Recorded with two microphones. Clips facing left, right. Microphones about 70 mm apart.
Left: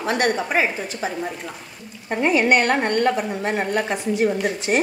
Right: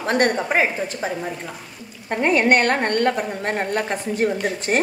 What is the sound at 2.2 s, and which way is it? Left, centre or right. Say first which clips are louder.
A woman's voice: right 1 dB; right.